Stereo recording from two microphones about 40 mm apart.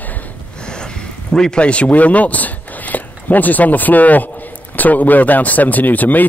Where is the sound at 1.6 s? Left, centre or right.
Left.